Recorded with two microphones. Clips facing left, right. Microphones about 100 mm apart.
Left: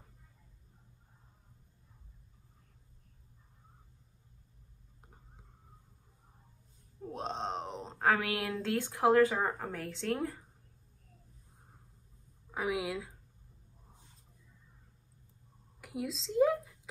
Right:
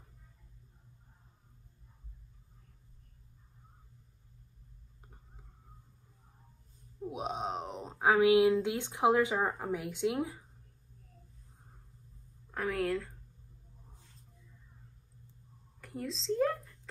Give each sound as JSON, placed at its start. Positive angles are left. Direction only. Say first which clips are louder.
{"t": 5.0, "sound": "whispering", "louder": "even", "side_deg": 0}
{"t": 7.0, "sound": "groan", "louder": "right 1 dB", "side_deg": -10}
{"t": 8.0, "sound": "speech", "louder": "right 7 dB", "side_deg": -20}
{"t": 12.4, "sound": "speech", "louder": "right 2 dB", "side_deg": 10}
{"t": 15.8, "sound": "a sound", "louder": "left 2 dB", "side_deg": 5}